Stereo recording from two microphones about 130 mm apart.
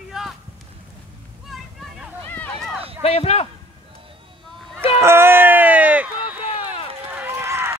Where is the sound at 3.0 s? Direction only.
50° left (ahead or behind).